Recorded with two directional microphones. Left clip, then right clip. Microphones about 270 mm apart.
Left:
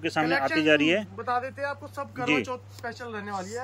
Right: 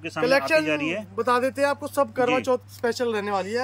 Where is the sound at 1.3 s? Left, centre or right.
Right.